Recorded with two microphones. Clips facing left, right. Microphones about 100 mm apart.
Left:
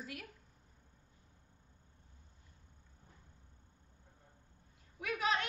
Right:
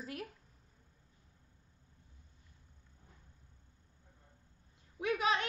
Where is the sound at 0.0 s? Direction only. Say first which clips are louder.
Right 4 dB; 35° right (ahead or behind).